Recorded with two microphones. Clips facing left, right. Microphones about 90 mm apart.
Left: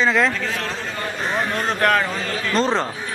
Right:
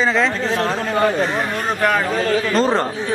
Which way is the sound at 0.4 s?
35° right (ahead or behind).